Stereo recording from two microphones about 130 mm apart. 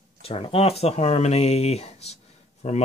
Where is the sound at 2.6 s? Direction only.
65° left (ahead or behind).